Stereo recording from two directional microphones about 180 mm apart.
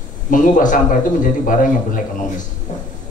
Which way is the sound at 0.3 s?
45° left (ahead or behind).